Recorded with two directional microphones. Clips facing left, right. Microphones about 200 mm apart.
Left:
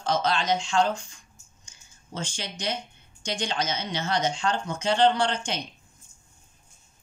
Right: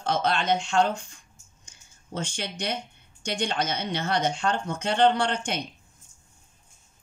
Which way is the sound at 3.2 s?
60° right (ahead or behind).